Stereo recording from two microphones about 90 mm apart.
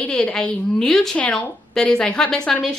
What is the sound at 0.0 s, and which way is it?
A woman's voice, 10° left (ahead or behind).